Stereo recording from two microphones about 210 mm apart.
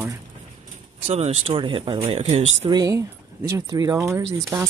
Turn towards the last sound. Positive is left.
turn(degrees=-15)  # may be behind; listen again after turning